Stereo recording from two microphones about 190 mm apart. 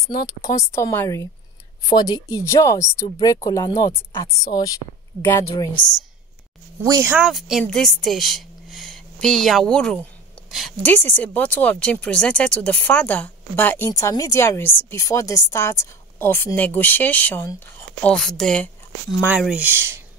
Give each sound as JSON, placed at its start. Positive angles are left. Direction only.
{"t": 0.4, "sound": "a woman's voice", "side_deg": 15}
{"t": 6.8, "sound": "speech", "side_deg": -15}
{"t": 7.2, "sound": "a woman's voice", "side_deg": 0}